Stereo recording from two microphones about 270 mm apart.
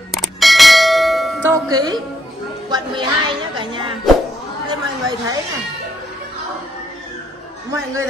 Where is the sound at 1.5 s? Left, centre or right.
Centre.